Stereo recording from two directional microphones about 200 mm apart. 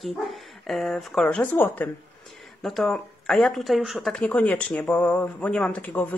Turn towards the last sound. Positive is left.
turn(degrees=10)  # may be behind; listen again after turning